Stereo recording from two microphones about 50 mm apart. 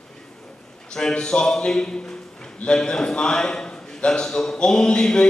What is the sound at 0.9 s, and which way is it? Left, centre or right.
A man's voice, centre.